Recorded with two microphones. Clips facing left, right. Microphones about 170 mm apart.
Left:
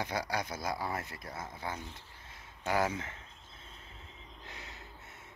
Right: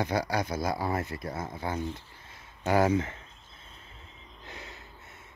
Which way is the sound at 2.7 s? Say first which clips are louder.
Right 7 dB; 30° right (ahead or behind).